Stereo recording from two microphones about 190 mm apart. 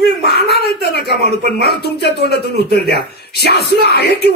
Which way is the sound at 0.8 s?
60° left (ahead or behind).